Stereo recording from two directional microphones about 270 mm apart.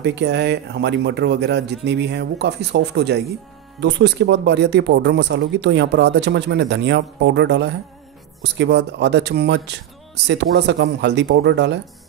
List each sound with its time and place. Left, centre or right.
0.0 s speech: right